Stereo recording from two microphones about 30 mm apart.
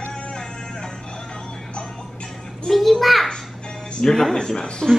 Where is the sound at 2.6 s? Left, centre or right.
Centre.